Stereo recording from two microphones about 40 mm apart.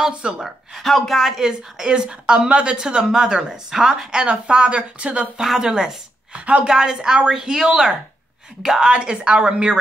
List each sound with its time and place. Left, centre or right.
0.1 s speech: right
0.8 s speech: centre
1.5 s speech: centre
5.4 s speech: centre
6.4 s speech: right